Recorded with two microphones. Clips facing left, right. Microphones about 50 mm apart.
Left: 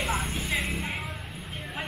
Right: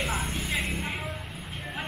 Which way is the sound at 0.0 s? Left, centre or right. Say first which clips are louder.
Left 1 dB; centre.